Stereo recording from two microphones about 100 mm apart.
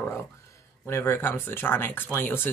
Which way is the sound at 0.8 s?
25° left (ahead or behind).